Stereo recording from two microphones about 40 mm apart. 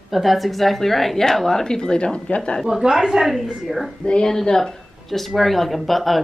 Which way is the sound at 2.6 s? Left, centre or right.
Centre.